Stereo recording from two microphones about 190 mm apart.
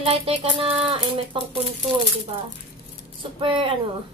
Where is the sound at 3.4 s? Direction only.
30° right (ahead or behind).